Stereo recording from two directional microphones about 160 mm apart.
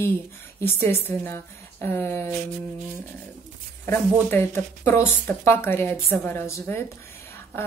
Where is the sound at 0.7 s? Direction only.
15° left (ahead or behind).